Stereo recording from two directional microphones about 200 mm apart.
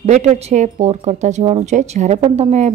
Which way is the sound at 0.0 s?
35° right (ahead or behind).